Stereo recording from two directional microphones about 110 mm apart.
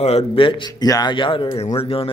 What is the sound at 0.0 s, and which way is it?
A man's voice, 65° left (ahead or behind).